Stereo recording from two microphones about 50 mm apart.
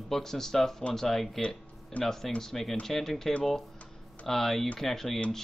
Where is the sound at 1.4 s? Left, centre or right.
Left.